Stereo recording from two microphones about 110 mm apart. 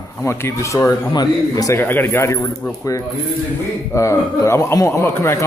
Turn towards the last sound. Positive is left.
turn(degrees=25)  # may be behind; listen again after turning